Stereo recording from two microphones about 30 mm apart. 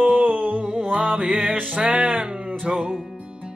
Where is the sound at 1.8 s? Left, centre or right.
Right.